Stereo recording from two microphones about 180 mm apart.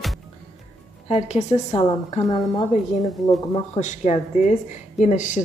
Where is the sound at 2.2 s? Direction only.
25° left (ahead or behind).